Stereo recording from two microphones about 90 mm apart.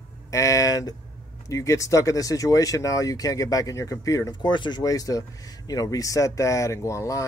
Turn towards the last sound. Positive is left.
turn(degrees=35)  # may be behind; listen again after turning